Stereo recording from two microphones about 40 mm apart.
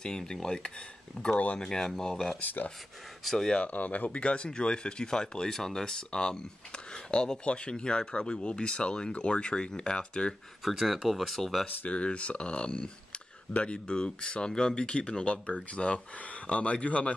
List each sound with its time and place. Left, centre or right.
0.0 s speech: centre
1.2 s speech: left
1.6 s speech: centre
2.4 s speech: left
3.3 s speech: centre
3.6 s speech: left
10.6 s speech: centre
11.8 s speech: left